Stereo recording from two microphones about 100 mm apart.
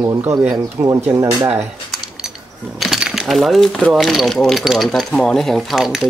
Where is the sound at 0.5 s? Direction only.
35° right (ahead or behind).